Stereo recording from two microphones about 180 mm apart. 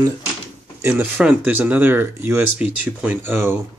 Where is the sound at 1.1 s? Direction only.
5° right (ahead or behind).